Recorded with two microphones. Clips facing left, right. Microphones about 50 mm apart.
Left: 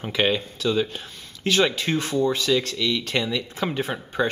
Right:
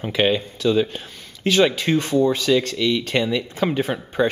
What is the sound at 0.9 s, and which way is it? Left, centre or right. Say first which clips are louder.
Speech: right 2 dB; centre.